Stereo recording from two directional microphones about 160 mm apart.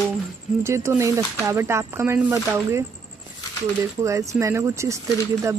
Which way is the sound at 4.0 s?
20° right (ahead or behind).